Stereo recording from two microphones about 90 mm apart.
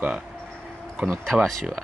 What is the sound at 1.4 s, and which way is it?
Speech, 5° right (ahead or behind).